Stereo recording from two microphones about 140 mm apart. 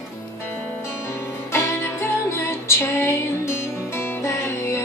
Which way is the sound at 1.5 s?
20° left (ahead or behind).